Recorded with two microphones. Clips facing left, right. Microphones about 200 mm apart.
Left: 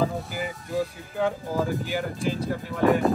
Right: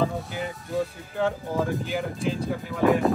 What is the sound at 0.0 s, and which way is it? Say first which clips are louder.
Speech: even; 5° left (ahead or behind).